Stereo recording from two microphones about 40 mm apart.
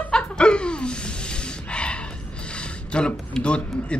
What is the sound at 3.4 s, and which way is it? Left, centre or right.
Speech, left.